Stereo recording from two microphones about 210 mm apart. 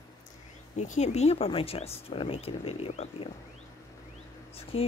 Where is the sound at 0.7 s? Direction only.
35° left (ahead or behind).